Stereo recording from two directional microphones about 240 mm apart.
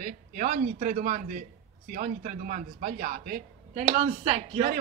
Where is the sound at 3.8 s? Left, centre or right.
Right.